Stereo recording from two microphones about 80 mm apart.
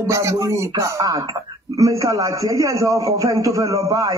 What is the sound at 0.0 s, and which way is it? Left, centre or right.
Speech, right.